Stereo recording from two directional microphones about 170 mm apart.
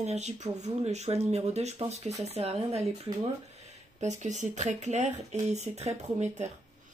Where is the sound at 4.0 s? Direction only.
45° right (ahead or behind).